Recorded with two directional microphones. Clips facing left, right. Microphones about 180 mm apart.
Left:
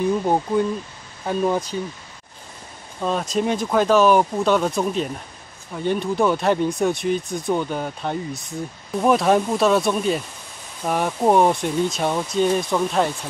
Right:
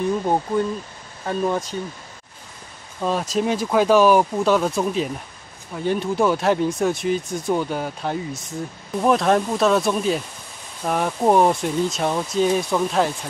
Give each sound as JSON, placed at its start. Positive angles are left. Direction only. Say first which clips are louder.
{"t": 0.2, "sound": "speech", "louder": "left 1 dB", "side_deg": 5}
{"t": 3.0, "sound": "speech", "louder": "even", "side_deg": -5}